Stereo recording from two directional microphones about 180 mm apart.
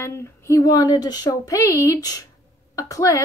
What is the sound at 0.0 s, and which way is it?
A woman's voice, 15° left (ahead or behind).